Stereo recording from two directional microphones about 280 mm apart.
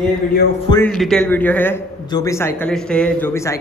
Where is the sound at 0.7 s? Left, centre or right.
Centre.